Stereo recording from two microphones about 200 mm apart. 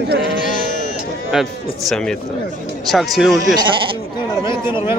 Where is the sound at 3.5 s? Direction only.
25° right (ahead or behind).